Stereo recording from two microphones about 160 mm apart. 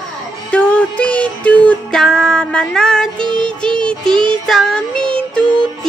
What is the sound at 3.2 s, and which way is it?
Music, 30° right (ahead or behind).